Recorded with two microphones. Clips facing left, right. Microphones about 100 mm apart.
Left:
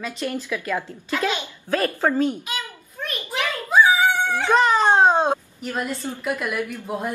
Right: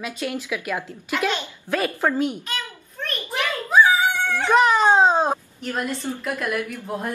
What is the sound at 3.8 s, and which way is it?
Dog, 10° left (ahead or behind).